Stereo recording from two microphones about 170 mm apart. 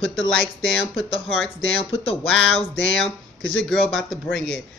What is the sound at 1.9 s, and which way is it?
Speech, 35° left (ahead or behind).